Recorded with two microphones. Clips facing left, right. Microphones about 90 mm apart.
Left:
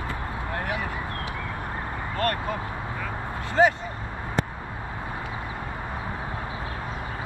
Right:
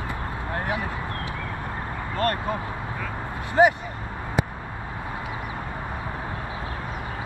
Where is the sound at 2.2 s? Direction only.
25° right (ahead or behind).